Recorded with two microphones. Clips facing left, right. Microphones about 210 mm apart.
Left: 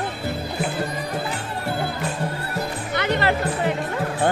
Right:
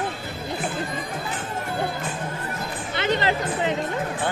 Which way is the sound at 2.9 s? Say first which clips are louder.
Left 1 dB; 20° right (ahead or behind).